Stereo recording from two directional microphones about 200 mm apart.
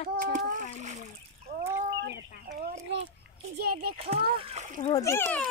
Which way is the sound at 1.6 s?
15° right (ahead or behind).